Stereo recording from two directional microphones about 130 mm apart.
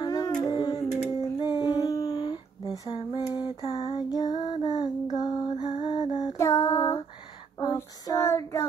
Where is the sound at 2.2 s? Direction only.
40° left (ahead or behind).